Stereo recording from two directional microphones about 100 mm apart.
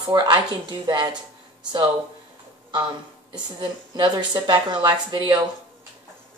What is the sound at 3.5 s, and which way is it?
A woman's voice, 50° right (ahead or behind).